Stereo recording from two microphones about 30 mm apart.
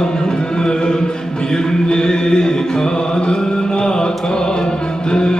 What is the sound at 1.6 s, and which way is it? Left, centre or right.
Music, left.